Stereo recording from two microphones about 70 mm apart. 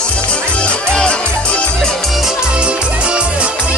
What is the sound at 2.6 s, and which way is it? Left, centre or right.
Music, centre.